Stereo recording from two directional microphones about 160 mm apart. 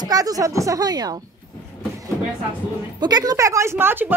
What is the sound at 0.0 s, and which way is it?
Speech, 25° right (ahead or behind).